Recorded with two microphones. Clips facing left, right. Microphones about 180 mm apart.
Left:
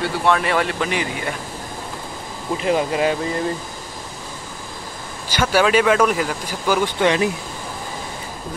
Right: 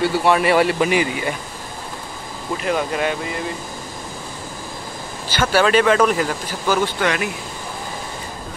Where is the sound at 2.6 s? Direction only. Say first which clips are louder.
Left 3 dB; 25° left (ahead or behind).